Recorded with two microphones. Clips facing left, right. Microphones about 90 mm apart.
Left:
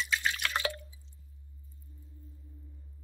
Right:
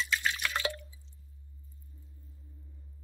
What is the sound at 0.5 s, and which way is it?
Drip, 20° left (ahead or behind).